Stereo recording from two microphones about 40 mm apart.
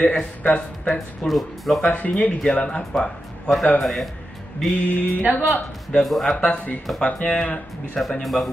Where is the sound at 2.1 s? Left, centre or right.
Left.